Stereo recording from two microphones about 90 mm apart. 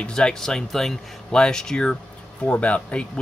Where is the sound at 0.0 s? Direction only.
10° left (ahead or behind).